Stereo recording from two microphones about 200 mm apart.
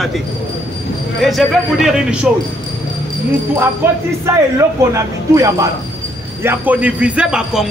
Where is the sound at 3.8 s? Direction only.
10° right (ahead or behind).